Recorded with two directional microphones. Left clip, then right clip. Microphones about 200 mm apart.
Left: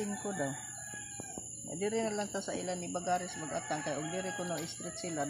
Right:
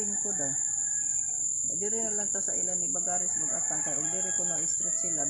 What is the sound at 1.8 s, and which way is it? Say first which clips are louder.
Speech: left 3 dB; 30° left (ahead or behind).